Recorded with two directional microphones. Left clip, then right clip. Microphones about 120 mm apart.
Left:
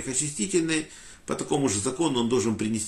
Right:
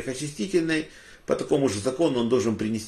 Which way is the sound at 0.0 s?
20° left (ahead or behind).